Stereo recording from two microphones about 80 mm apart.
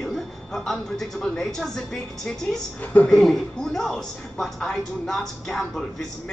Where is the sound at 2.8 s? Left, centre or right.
Centre.